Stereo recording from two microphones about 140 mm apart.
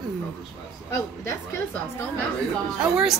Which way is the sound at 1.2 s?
20° left (ahead or behind).